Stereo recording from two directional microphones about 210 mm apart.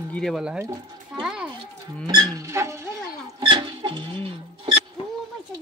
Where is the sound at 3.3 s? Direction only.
20° right (ahead or behind).